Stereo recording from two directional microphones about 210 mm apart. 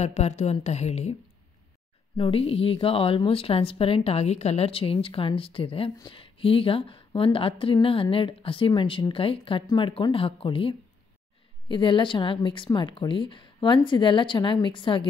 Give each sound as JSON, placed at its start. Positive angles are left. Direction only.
{"t": 0.0, "sound": "speech", "side_deg": 30}
{"t": 2.1, "sound": "speech", "side_deg": 25}